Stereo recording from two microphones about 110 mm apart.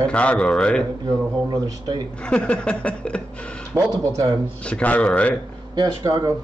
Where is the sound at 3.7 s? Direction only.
20° right (ahead or behind).